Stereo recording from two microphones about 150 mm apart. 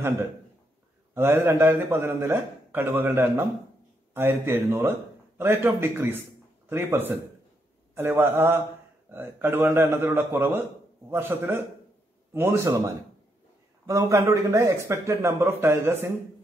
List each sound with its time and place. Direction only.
1.1 s a man's voice: 15° right (ahead or behind)
7.9 s a man's voice: 15° right (ahead or behind)